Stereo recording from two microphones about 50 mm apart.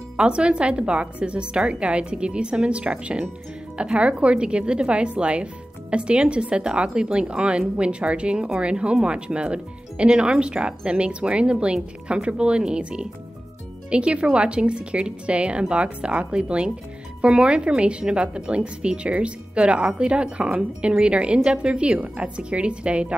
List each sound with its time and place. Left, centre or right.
0.2 s speech: right